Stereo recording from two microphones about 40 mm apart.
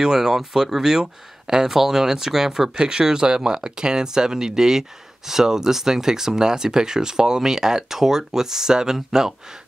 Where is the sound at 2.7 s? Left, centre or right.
Centre.